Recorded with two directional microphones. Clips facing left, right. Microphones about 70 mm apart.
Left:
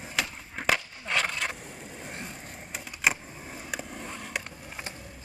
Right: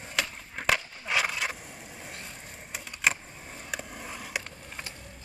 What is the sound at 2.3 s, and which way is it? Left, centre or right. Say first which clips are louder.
Vehicle: left 2 dB; centre.